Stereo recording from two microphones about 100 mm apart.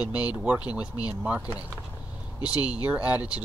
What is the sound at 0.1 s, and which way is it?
Speech, 10° right (ahead or behind).